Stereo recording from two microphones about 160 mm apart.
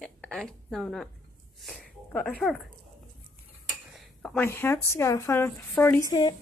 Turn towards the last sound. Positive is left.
turn(degrees=20)  # may be behind; listen again after turning